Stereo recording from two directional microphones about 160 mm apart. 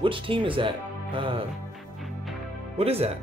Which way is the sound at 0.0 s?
30° right (ahead or behind).